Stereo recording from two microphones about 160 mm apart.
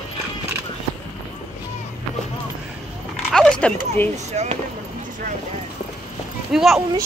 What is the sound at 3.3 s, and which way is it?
Speech, 5° left (ahead or behind).